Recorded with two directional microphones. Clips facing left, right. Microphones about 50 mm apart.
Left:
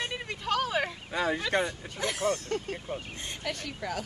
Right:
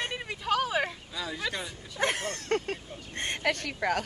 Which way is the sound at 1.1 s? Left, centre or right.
Left.